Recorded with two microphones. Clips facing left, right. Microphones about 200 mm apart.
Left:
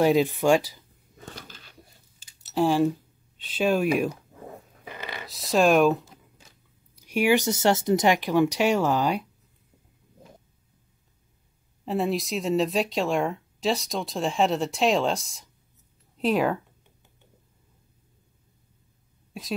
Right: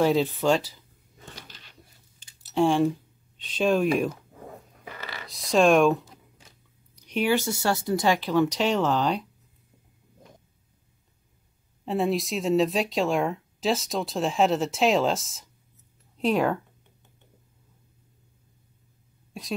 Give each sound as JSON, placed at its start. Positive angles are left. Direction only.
{"t": 0.0, "sound": "speech", "side_deg": 10}
{"t": 1.2, "sound": "a sound", "side_deg": 45}
{"t": 2.5, "sound": "speech", "side_deg": 5}
{"t": 4.8, "sound": "a sound", "side_deg": 20}
{"t": 5.3, "sound": "speech", "side_deg": 0}
{"t": 7.0, "sound": "speech", "side_deg": 10}
{"t": 11.8, "sound": "speech", "side_deg": 0}